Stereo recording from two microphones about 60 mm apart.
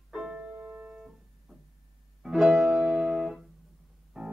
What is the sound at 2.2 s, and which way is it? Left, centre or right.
Music, centre.